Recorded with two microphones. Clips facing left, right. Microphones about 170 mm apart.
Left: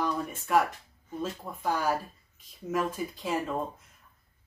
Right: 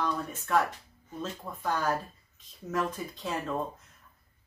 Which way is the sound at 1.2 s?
10° left (ahead or behind).